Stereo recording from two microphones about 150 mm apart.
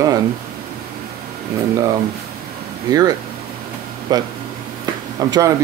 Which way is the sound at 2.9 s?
30° right (ahead or behind).